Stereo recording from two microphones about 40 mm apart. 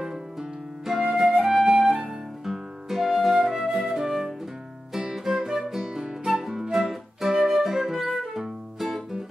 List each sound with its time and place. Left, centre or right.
0.0 s music: centre
1.2 s flute: right
1.5 s flute: centre
2.0 s music: centre
7.8 s music: centre